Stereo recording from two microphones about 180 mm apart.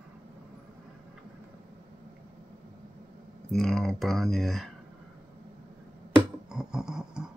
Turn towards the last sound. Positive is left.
turn(degrees=-5)  # may be behind; listen again after turning